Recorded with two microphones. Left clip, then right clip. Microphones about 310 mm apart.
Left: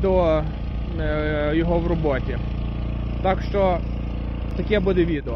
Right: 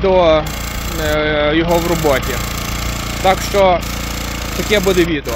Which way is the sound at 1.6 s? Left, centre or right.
Right.